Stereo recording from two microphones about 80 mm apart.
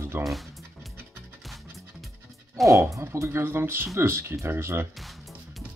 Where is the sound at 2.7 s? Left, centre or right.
Right.